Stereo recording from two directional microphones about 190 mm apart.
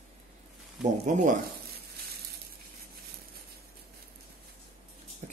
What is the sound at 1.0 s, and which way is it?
Speech, 40° right (ahead or behind).